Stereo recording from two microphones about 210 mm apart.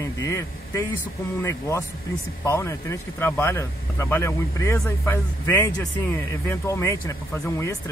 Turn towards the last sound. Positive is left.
turn(degrees=15)  # may be behind; listen again after turning